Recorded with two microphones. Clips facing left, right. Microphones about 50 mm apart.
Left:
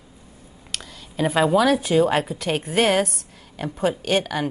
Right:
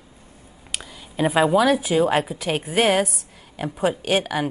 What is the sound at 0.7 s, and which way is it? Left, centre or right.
A woman's voice, centre.